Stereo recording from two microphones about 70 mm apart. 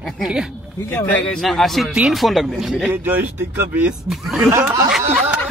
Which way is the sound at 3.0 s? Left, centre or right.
Right.